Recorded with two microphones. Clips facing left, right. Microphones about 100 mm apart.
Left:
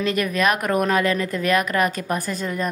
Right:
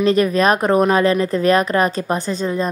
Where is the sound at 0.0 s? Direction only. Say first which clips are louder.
Right 6 dB; 30° right (ahead or behind).